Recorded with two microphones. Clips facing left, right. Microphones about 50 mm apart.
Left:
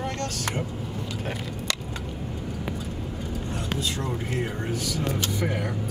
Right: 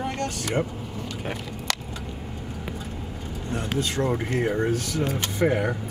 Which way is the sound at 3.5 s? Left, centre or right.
Right.